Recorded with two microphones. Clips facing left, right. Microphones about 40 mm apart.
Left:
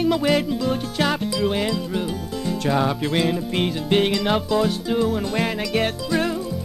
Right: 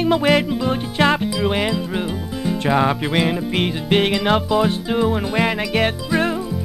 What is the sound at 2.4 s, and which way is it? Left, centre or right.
Speech, right.